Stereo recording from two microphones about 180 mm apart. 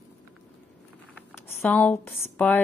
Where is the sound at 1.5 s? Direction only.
10° left (ahead or behind).